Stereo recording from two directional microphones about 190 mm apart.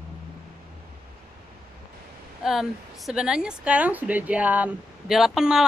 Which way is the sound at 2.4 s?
Centre (ahead or behind).